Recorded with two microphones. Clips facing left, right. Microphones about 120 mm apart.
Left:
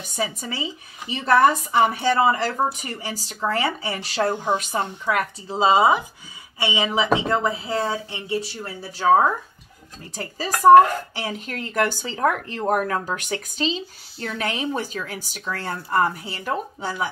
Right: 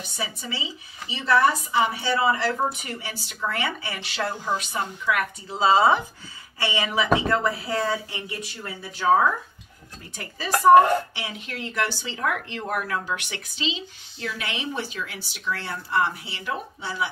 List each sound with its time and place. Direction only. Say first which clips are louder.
0.1 s a woman's voice: left 6 dB; 45° left (ahead or behind)
5.6 s speech: left 1 dB; 15° left (ahead or behind); by 9.0 s 30° left (ahead or behind)
10.1 s a woman's voice: right 1 dB; 35° left (ahead or behind)